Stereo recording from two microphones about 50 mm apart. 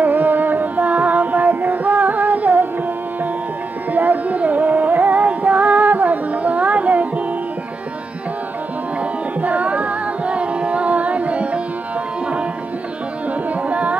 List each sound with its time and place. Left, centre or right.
0.0 s carnatic music: right
3.9 s music: right
9.4 s music: right
13.5 s carnatic music: right